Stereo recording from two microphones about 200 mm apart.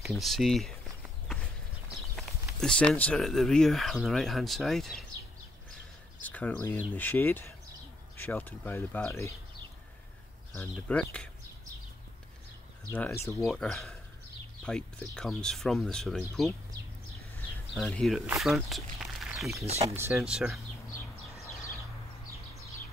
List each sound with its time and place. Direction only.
0.0 s speech: centre (ahead or behind)
2.1 s speech: 5° left (ahead or behind)
6.2 s speech: 10° left (ahead or behind)
10.5 s speech: 10° left (ahead or behind)
12.9 s speech: 10° left (ahead or behind)
17.7 s speech: centre (ahead or behind)
18.4 s a sound: centre (ahead or behind)
19.6 s speech: 30° right (ahead or behind)
20.0 s speech: 10° right (ahead or behind)
20.9 s bird: 15° left (ahead or behind)